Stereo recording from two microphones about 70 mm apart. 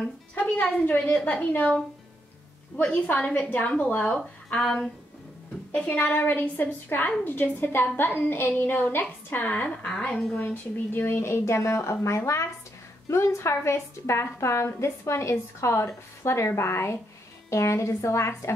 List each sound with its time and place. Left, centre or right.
0.3 s a woman's voice: centre
2.9 s a woman's voice: left
4.5 s speech: centre
5.9 s a woman's voice: left
10.4 s a woman's voice: left